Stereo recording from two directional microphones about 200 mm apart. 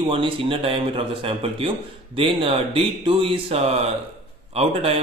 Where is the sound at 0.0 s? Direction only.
30° right (ahead or behind).